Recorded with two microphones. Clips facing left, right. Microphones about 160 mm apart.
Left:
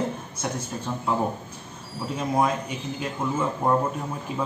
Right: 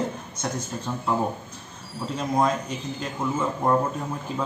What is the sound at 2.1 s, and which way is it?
Speech, 5° left (ahead or behind).